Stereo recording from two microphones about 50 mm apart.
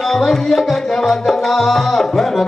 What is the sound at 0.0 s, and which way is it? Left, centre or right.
Music, centre.